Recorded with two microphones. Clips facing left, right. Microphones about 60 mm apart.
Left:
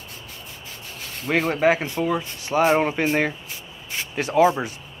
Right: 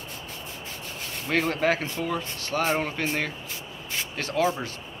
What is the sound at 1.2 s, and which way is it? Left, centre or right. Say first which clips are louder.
Speech: left 5 dB; centre.